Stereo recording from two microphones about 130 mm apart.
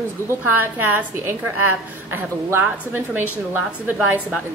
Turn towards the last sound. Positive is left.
turn(degrees=-10)  # may be behind; listen again after turning